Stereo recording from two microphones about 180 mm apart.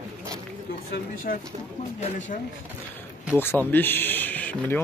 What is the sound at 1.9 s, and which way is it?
Speech, 45° left (ahead or behind).